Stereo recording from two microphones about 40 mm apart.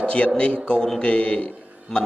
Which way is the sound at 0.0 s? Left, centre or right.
Left.